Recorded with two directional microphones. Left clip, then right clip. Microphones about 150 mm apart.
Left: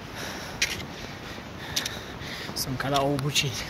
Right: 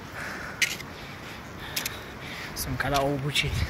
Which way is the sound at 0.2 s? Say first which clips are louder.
Right 1 dB; 35° left (ahead or behind).